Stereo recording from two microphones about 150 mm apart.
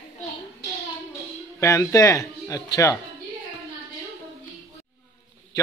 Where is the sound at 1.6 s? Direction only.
20° left (ahead or behind).